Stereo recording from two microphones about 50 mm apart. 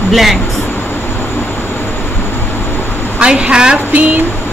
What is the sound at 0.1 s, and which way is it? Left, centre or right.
Speech, centre.